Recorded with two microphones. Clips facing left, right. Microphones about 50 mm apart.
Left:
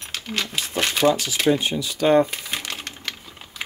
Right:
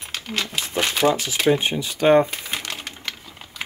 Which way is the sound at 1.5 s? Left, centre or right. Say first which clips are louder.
Right 1 dB; right.